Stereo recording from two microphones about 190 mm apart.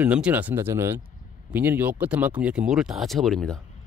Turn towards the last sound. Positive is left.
turn(degrees=0)  # may be behind; listen again after turning